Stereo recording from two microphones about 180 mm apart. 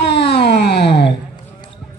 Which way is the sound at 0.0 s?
70° left (ahead or behind).